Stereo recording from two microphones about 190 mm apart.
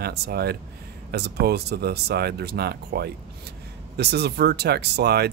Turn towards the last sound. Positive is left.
turn(degrees=-60)  # may be behind; listen again after turning